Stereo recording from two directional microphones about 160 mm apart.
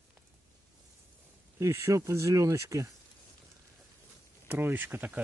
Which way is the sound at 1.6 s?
15° right (ahead or behind).